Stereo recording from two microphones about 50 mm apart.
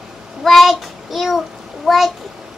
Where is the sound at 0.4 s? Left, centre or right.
Centre.